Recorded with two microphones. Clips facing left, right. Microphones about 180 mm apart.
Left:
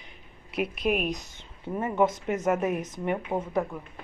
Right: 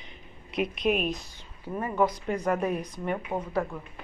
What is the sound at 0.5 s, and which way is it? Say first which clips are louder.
A woman's voice: even; 5° left (ahead or behind).